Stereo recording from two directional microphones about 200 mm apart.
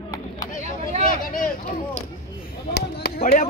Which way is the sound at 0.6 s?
35° right (ahead or behind).